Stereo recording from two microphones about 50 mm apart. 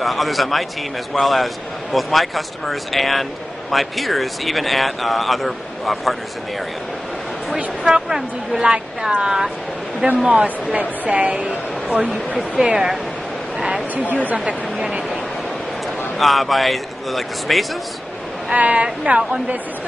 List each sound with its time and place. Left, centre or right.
0.0 s speech: centre
7.5 s speech: centre
12.7 s speech: centre
13.6 s a sound: centre
14.4 s speech: centre
16.2 s speech: centre
18.5 s speech: right